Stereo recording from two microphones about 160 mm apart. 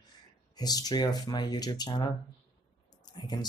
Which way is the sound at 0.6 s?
25° left (ahead or behind).